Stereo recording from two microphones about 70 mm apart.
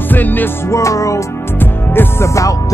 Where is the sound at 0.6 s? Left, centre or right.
Left.